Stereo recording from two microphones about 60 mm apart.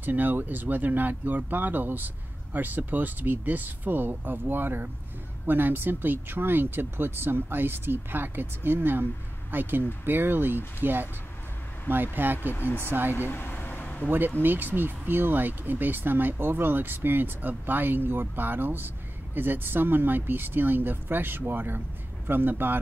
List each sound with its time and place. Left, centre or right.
0.0 s speech: right
12.5 s speech: left
12.8 s speech: right
13.3 s vehicle: left
14.0 s speech: right